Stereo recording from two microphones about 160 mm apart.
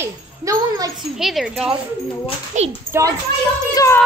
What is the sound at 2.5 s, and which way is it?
Speech, 50° right (ahead or behind).